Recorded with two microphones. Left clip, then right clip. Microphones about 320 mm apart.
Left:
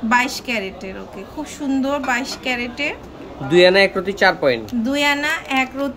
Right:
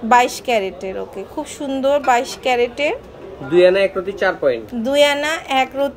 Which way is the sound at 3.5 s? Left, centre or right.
Left.